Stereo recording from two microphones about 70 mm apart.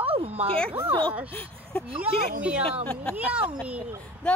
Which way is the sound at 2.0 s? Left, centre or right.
Centre.